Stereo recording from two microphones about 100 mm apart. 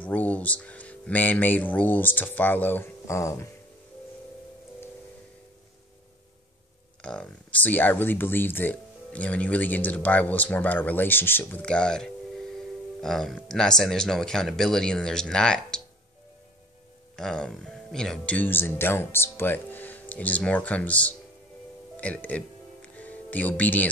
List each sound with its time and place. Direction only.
0.0 s speech: 15° left (ahead or behind)
7.0 s speech: 10° left (ahead or behind)
11.6 s speech: 10° left (ahead or behind)
17.1 s speech: 5° left (ahead or behind)
22.0 s music: 15° left (ahead or behind)